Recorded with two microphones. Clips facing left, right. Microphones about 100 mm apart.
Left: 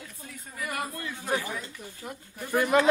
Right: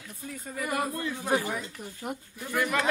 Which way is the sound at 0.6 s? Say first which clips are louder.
Right 4 dB; 15° right (ahead or behind).